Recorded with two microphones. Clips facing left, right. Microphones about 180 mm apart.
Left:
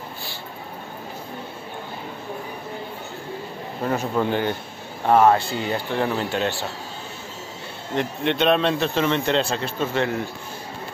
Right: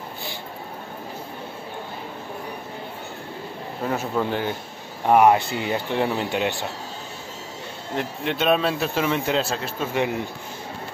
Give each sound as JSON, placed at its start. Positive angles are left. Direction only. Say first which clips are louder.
{"t": 3.8, "sound": "speech", "louder": "left 2 dB", "side_deg": -5}
{"t": 5.0, "sound": "speech", "louder": "even", "side_deg": -15}
{"t": 7.9, "sound": "speech", "louder": "left 3 dB", "side_deg": -5}